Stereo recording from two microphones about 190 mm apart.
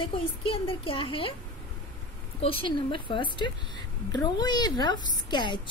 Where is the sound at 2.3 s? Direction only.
25° left (ahead or behind).